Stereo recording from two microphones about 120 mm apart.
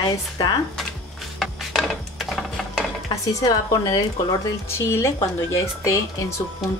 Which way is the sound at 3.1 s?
30° left (ahead or behind).